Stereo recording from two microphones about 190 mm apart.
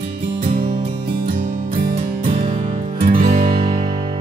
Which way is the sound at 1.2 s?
50° right (ahead or behind).